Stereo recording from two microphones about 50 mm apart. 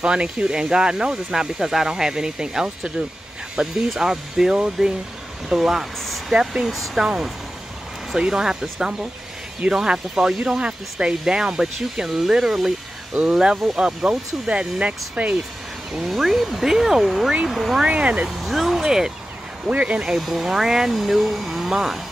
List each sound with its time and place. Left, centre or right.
0.0 s speech: centre
15.9 s speech: centre
17.8 s speech: right
18.4 s speech: centre
19.6 s speech: right
20.2 s speech: centre